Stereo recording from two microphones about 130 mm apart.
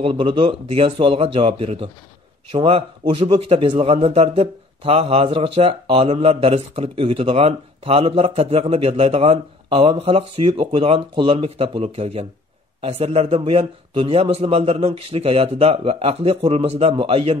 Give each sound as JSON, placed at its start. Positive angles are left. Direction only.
{"t": 0.0, "sound": "a man's voice", "side_deg": -40}